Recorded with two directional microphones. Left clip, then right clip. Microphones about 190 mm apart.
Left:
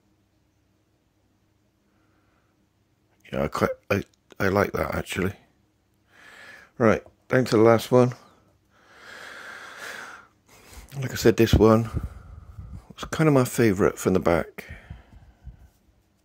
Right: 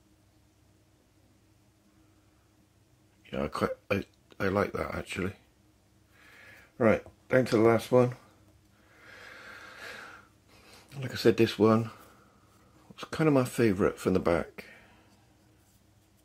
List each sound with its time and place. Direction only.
3.3 s speech: 45° left (ahead or behind)
6.1 s a sound: 50° left (ahead or behind)
8.8 s snort: 50° left (ahead or behind)
12.7 s speech: 40° left (ahead or behind)